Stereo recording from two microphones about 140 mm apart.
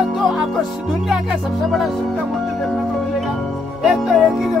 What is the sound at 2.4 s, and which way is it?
Music, centre (ahead or behind).